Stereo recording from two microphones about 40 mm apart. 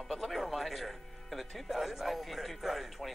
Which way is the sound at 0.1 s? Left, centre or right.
Centre.